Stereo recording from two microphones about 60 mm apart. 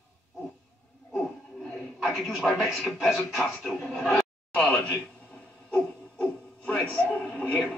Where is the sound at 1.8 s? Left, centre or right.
Centre.